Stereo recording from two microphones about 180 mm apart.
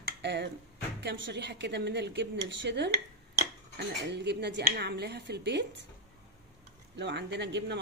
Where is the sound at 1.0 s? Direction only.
70° right (ahead or behind).